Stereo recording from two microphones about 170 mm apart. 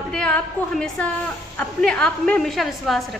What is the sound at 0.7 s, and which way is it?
A woman's voice, 5° left (ahead or behind).